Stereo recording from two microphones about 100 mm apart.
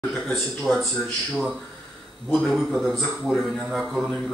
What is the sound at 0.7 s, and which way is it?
Speech, 5° left (ahead or behind).